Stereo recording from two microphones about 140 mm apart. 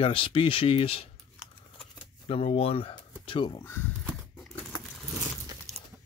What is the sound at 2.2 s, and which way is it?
Speech, 45° left (ahead or behind).